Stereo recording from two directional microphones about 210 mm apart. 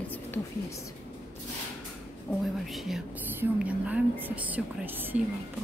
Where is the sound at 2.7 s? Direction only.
Centre (ahead or behind).